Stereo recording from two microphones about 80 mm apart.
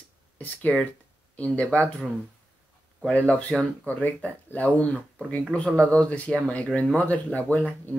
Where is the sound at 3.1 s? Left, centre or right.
Centre.